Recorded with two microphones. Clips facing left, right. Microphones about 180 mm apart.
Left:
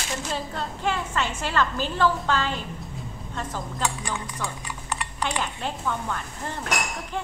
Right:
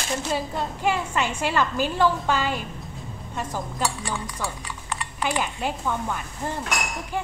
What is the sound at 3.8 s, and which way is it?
Speech, 20° left (ahead or behind).